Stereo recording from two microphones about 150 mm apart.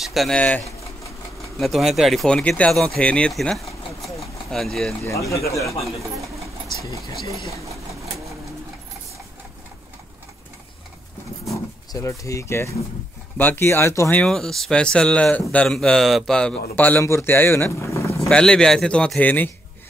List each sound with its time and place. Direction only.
0.0 s speech: centre (ahead or behind)
1.6 s speech: centre (ahead or behind)
5.0 s speech: 20° left (ahead or behind)
11.5 s speech: 20° left (ahead or behind)
14.2 s speech: 5° left (ahead or behind); by 18.3 s 20° left (ahead or behind)
18.3 s speech: 5° left (ahead or behind)